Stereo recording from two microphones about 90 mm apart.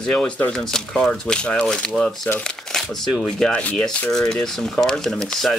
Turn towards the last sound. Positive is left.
turn(degrees=5)  # may be behind; listen again after turning